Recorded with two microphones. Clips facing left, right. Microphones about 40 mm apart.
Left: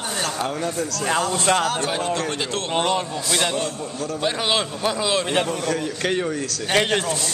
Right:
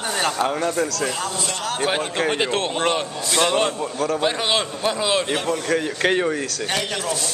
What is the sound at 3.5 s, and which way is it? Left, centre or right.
Speech, right.